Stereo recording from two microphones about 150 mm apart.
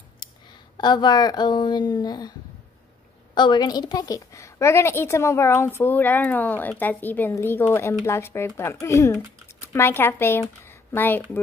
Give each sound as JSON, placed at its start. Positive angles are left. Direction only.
{"t": 0.7, "sound": "a woman's voice", "side_deg": 30}
{"t": 3.3, "sound": "a woman's voice", "side_deg": 30}